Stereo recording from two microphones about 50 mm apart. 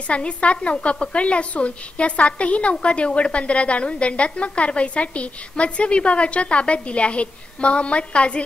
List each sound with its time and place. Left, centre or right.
0.1 s a woman's voice: left